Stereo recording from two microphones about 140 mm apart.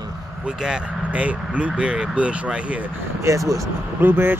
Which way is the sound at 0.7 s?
10° right (ahead or behind).